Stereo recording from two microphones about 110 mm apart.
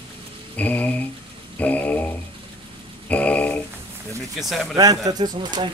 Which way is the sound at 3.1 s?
10° left (ahead or behind).